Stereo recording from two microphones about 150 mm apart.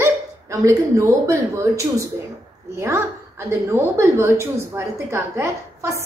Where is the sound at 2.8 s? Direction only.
15° right (ahead or behind).